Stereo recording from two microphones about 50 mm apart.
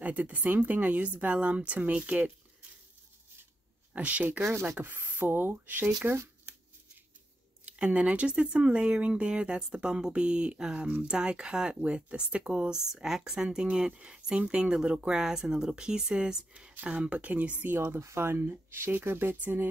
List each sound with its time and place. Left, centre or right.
0.0 s speech: right
3.9 s speech: right
4.4 s speech: right
4.6 s speech: right
7.6 s speech: right
12.7 s speech: centre; by 17.7 s right
17.7 s speech: right
19.3 s speech: right